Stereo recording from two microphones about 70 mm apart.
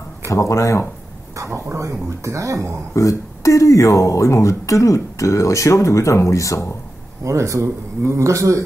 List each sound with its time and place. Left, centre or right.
0.3 s speech: left
1.3 s speech: right
2.9 s speech: left
7.2 s speech: right